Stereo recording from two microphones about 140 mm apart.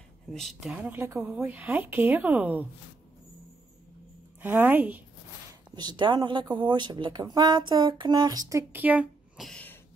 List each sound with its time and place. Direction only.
0.3 s a woman's voice: centre (ahead or behind)
4.4 s a woman's voice: 15° right (ahead or behind)
5.8 s speech: 35° right (ahead or behind)
8.8 s speech: 10° right (ahead or behind)
9.5 s a sound: 10° left (ahead or behind)